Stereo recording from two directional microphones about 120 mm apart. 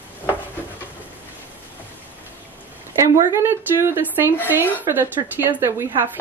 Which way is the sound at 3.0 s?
25° right (ahead or behind).